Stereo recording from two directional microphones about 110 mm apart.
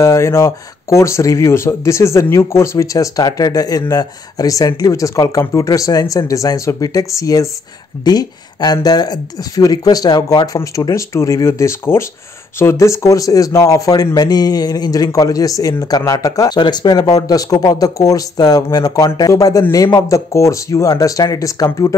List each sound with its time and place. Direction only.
0.0 s speech: 25° left (ahead or behind)